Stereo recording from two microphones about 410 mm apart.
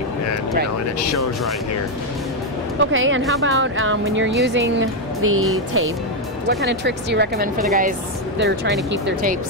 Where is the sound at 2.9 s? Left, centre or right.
Right.